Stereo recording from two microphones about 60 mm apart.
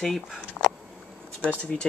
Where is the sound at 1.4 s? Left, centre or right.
Centre.